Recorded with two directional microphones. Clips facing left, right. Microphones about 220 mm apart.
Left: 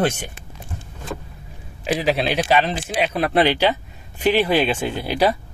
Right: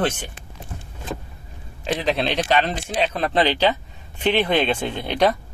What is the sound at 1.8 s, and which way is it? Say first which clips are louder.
Speech: left 2 dB; 5° left (ahead or behind).